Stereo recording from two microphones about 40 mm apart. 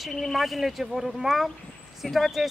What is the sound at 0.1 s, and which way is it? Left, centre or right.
Speech, centre.